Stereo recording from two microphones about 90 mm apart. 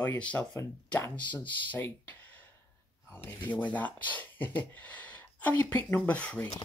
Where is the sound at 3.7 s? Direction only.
20° left (ahead or behind).